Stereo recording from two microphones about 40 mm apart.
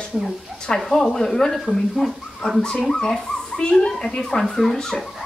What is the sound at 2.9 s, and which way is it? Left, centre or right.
Speech, centre.